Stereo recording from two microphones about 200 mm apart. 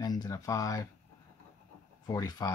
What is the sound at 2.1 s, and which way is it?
Speech, 20° left (ahead or behind).